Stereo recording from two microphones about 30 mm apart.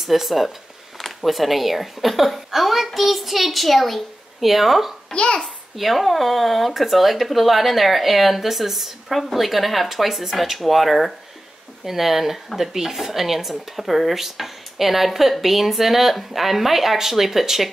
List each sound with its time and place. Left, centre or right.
0.0 s speech: centre
4.4 s speech: centre
5.1 s a child's voice: left
5.8 s speech: centre